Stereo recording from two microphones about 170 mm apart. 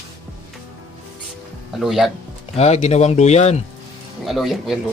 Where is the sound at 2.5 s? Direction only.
40° left (ahead or behind).